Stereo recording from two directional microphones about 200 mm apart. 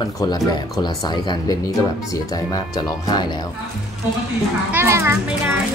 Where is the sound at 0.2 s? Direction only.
20° left (ahead or behind).